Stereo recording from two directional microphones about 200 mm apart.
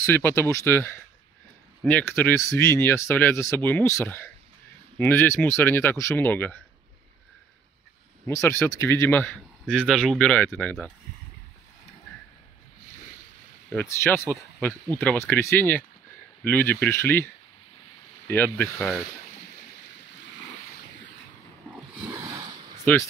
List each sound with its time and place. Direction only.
0.0 s speech: 10° left (ahead or behind)
8.3 s speech: 15° left (ahead or behind)
13.7 s speech: 10° left (ahead or behind)
22.2 s a sound: 25° right (ahead or behind)
22.9 s speech: 10° left (ahead or behind)